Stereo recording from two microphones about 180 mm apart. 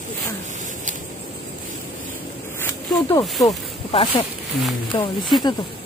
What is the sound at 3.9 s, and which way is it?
Speech, 30° left (ahead or behind).